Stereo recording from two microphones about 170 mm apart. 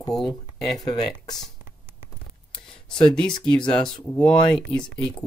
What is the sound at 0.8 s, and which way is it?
Speech, 25° left (ahead or behind).